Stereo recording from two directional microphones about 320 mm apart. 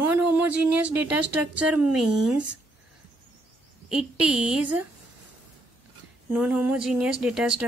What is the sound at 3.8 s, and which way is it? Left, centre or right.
Speech, centre.